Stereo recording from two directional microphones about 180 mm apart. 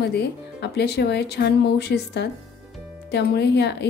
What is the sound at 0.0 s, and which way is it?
A woman's voice, 70° left (ahead or behind).